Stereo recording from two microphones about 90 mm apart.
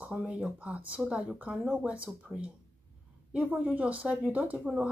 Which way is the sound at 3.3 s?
15° right (ahead or behind).